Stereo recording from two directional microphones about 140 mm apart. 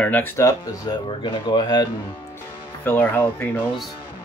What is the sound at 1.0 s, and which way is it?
Speech, 40° left (ahead or behind).